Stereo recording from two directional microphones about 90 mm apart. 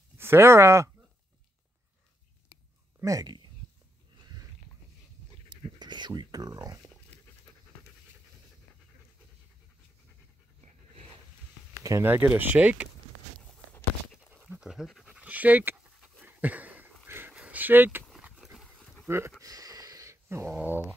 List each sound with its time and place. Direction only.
0.2 s speech: 30° right (ahead or behind)
3.0 s speech: 40° right (ahead or behind)
5.8 s speech: 55° right (ahead or behind)
12.0 s speech: 20° right (ahead or behind)
14.6 s pant: 5° right (ahead or behind)
15.1 s pant: 15° right (ahead or behind)
16.2 s a sound: 20° right (ahead or behind)
18.4 s dog: centre (ahead or behind)
19.0 s speech: 30° right (ahead or behind)
19.4 s a sound: 45° right (ahead or behind)
20.5 s speech: 20° right (ahead or behind)